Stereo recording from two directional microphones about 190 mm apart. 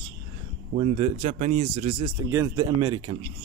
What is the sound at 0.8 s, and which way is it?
Speech, 35° right (ahead or behind).